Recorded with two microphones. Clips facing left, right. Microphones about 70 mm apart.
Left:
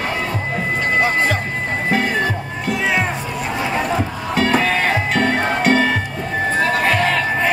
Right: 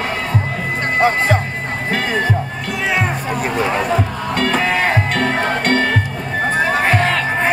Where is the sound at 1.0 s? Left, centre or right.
Right.